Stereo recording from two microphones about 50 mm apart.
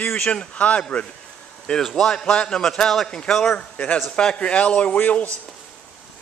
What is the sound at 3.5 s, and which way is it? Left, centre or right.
A man's voice, left.